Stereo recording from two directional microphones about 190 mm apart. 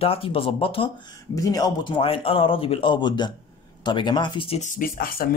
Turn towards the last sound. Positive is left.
turn(degrees=50)  # may be behind; listen again after turning